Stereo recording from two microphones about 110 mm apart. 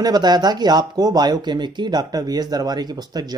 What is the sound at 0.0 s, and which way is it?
Speech, 40° right (ahead or behind).